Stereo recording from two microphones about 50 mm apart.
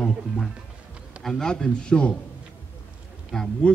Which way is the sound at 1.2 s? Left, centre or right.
Centre.